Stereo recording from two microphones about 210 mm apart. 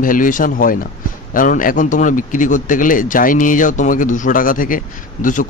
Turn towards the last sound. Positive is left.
turn(degrees=40)  # may be behind; listen again after turning